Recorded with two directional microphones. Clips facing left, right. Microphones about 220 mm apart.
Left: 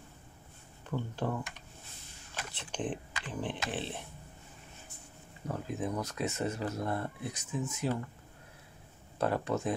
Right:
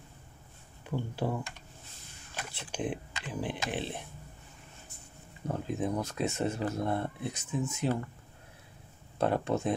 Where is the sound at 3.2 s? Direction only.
10° right (ahead or behind).